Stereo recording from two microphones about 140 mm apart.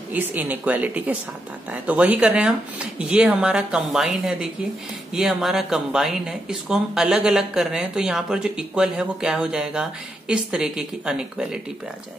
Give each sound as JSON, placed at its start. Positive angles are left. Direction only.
{"t": 0.1, "sound": "speech", "side_deg": -10}